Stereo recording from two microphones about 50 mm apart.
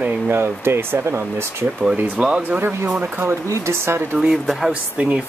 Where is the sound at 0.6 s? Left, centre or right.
Right.